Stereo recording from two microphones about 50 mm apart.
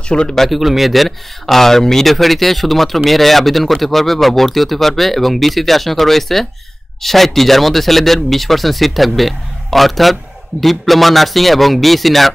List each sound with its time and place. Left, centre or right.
0.1 s speech: centre
0.4 s speech: centre